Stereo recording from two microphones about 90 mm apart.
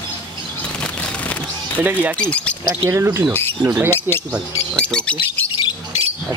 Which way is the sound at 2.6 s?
30° right (ahead or behind).